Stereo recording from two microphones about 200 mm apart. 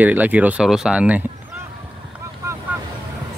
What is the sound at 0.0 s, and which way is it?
Speech, 10° right (ahead or behind).